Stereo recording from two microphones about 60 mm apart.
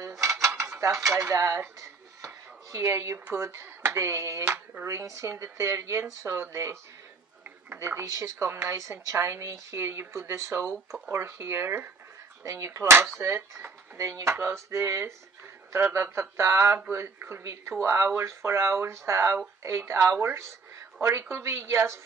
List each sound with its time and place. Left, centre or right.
0.2 s dishes: right
0.7 s speech: right
1.8 s a sound: right
3.3 s speech: right
7.8 s speech: right
12.4 s speech: right
13.2 s speech: right
13.9 s speech: right
14.3 s speech: right
17.4 s speech: right
17.8 s speech: right